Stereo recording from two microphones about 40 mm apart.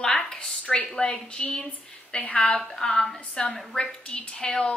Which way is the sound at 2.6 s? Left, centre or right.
Centre.